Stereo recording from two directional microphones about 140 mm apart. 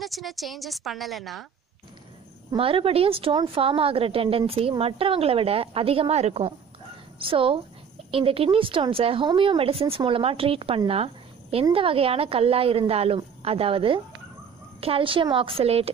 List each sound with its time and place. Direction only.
0.0 s a woman's voice: centre (ahead or behind)
2.5 s a woman's voice: 40° right (ahead or behind)